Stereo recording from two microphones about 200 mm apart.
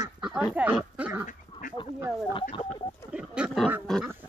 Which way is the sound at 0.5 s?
10° right (ahead or behind).